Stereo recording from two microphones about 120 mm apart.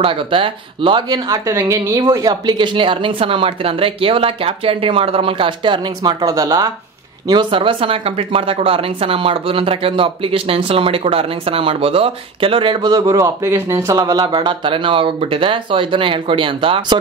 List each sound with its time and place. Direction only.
0.0 s speech: 45° right (ahead or behind)
1.7 s a woman's voice: 25° right (ahead or behind)
2.4 s speech: 40° right (ahead or behind)
6.2 s a woman's voice: 25° right (ahead or behind)
7.2 s speech: 40° right (ahead or behind)
12.8 s speech: 30° right (ahead or behind); by 16.8 s 45° right (ahead or behind)